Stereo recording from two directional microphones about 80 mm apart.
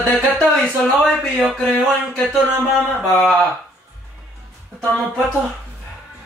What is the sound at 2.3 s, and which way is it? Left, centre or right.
Speech, centre.